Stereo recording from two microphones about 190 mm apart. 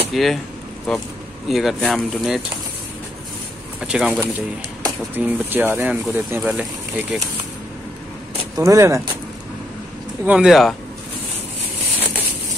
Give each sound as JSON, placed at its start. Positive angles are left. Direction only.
{"t": 0.1, "sound": "speech", "side_deg": 0}
{"t": 3.8, "sound": "speech", "side_deg": -5}
{"t": 8.5, "sound": "speech", "side_deg": -15}
{"t": 10.2, "sound": "speech", "side_deg": -5}